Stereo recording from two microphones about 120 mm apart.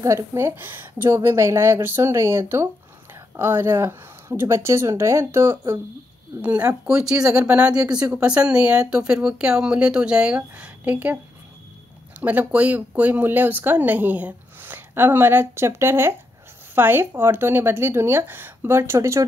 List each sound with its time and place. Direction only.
0.0 s a woman's voice: 25° right (ahead or behind)
12.2 s a woman's voice: 15° right (ahead or behind)